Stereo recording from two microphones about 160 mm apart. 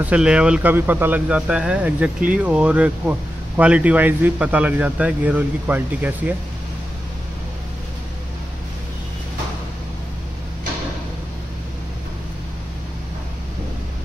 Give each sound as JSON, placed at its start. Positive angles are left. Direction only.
{"t": 0.0, "sound": "speech", "side_deg": -5}